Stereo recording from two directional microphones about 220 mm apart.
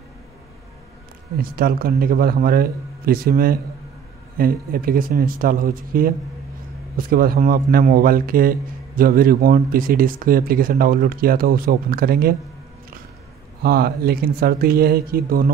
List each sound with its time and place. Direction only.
1.4 s a man's voice: 40° right (ahead or behind)
13.6 s speech: 45° right (ahead or behind)